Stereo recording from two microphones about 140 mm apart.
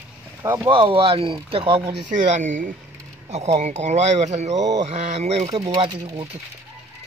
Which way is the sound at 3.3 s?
55° right (ahead or behind).